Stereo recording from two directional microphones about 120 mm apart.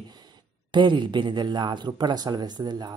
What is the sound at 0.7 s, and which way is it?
Speech, 40° right (ahead or behind).